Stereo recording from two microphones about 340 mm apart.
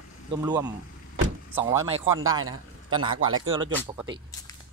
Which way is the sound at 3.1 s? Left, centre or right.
Right.